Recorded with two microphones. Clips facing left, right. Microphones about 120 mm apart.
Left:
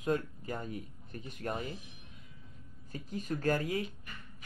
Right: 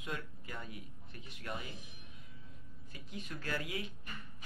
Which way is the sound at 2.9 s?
40° left (ahead or behind).